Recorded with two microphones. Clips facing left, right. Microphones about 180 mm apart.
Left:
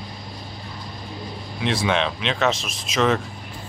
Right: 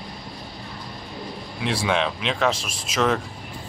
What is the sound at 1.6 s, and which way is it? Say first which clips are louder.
Speech: left 1 dB; 5° right (ahead or behind).